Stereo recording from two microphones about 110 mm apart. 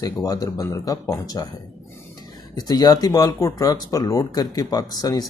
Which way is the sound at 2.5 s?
40° left (ahead or behind).